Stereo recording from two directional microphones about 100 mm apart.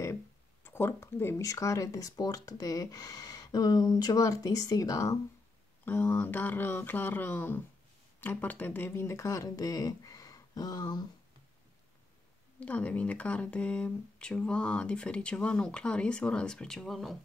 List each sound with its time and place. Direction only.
0.7 s speech: 25° left (ahead or behind)
5.9 s speech: 20° left (ahead or behind); by 11.1 s 45° left (ahead or behind)
12.5 s speech: 15° left (ahead or behind)